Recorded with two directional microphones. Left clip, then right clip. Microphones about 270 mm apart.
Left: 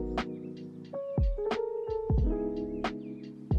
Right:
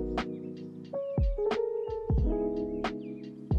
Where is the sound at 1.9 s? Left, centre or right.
Centre.